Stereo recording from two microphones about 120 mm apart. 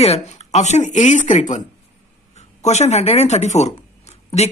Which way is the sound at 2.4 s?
70° left (ahead or behind).